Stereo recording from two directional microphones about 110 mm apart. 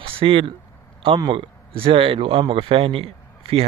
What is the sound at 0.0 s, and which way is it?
Speech, 55° right (ahead or behind).